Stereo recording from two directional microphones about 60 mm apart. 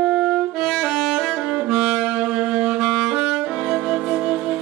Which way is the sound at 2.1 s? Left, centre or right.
Centre.